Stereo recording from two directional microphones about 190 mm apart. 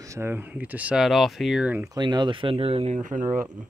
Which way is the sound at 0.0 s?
15° right (ahead or behind).